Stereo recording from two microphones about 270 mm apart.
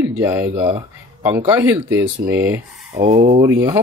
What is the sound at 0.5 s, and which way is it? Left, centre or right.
Speech, centre.